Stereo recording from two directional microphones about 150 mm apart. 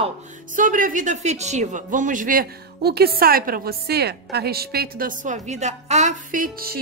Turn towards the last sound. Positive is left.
turn(degrees=-85)